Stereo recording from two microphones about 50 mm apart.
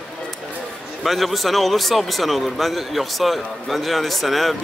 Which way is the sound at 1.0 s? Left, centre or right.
Centre.